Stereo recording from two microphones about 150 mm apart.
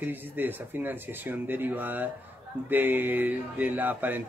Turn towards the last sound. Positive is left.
turn(degrees=-10)  # may be behind; listen again after turning